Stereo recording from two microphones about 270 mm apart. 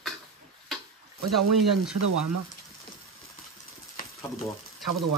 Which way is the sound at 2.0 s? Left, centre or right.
Right.